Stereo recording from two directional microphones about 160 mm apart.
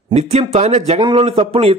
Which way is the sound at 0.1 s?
40° right (ahead or behind).